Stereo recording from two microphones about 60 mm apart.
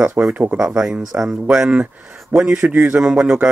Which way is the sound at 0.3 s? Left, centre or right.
Right.